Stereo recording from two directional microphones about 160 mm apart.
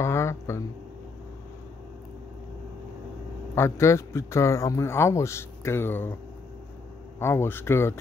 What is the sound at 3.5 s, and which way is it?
Speech, 15° left (ahead or behind).